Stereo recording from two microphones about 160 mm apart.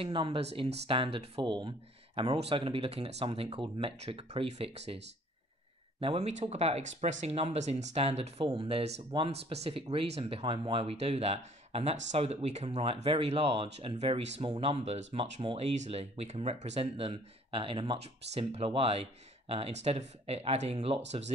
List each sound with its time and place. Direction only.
0.0 s speech: 30° right (ahead or behind)